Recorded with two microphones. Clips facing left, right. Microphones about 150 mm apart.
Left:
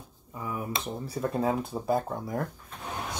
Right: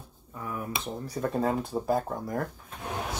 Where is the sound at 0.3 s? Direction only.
15° left (ahead or behind).